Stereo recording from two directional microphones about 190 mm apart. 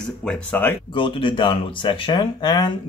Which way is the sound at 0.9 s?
25° left (ahead or behind).